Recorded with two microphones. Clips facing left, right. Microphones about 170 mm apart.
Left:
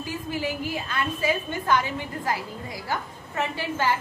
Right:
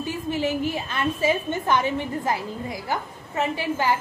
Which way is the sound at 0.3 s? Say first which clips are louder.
Right 5 dB; 20° right (ahead or behind).